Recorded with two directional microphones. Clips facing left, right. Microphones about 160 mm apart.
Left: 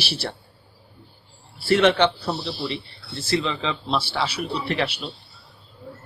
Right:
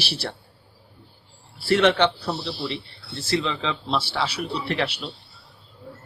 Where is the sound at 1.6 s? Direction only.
10° left (ahead or behind).